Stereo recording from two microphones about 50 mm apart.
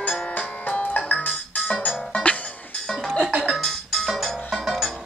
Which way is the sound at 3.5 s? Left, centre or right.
Centre.